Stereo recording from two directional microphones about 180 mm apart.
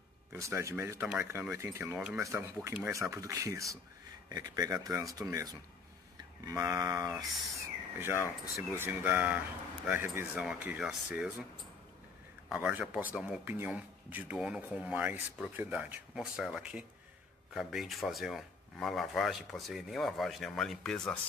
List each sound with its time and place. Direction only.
0.3 s speech: 15° right (ahead or behind)
12.4 s speech: 5° right (ahead or behind)